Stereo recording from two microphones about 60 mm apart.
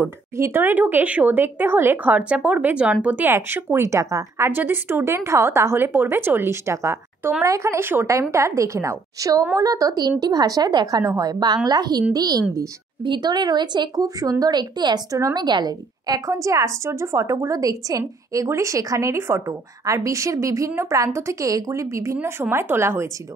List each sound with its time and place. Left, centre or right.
0.4 s speech: right
2.1 s speech: right
3.3 s a woman's voice: right
4.4 s a woman's voice: right
9.6 s a woman's voice: right
13.9 s a woman's voice: right
15.0 s a woman's voice: right
18.5 s a woman's voice: right